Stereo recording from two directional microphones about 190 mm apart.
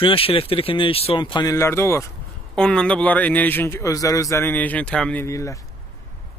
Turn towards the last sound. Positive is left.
turn(degrees=15)  # may be behind; listen again after turning